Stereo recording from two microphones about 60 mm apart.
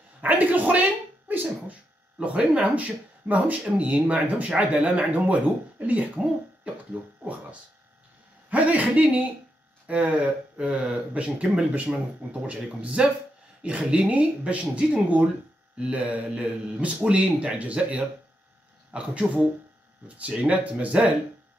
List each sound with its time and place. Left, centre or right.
0.2 s a woman's voice: right
2.1 s speech: centre
8.5 s speech: right